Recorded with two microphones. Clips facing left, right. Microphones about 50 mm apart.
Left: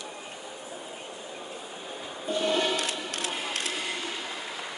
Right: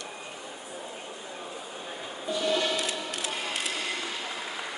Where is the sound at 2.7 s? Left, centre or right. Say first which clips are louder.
Even; left.